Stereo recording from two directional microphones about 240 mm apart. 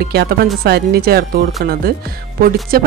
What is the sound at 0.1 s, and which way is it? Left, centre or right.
Speech, right.